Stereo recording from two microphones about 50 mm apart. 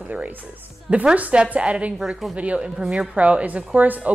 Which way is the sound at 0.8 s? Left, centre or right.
Right.